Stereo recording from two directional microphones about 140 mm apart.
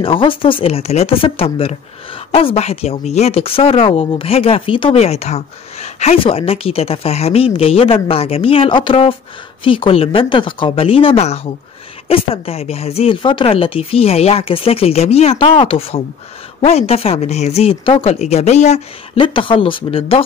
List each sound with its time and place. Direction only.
0.0 s speech: 40° left (ahead or behind); by 18.8 s 55° left (ahead or behind)
19.1 s speech: 35° left (ahead or behind)